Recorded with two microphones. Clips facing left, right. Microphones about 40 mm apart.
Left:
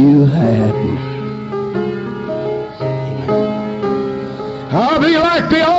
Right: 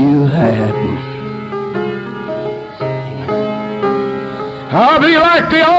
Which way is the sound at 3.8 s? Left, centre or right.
Right.